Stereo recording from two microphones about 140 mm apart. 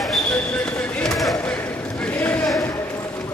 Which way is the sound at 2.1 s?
10° left (ahead or behind).